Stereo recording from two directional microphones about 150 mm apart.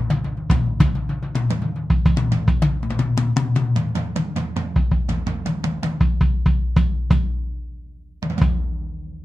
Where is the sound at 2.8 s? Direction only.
10° left (ahead or behind).